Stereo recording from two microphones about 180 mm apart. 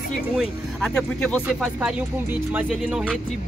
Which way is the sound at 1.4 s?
5° right (ahead or behind).